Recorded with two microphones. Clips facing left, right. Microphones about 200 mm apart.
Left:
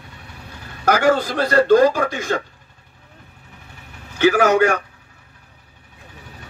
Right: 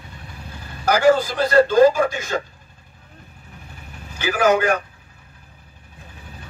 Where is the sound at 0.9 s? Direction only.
60° left (ahead or behind).